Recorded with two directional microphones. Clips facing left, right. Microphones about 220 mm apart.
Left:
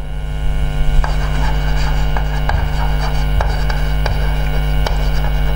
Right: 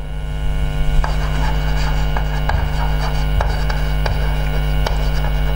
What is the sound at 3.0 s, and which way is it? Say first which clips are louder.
Music: left 1 dB; 15° left (ahead or behind).